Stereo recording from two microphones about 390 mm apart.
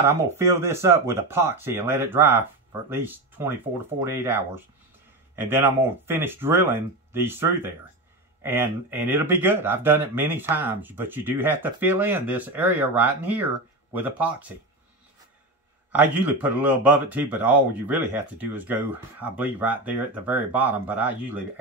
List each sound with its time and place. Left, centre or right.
0.0 s speech: centre
15.9 s speech: centre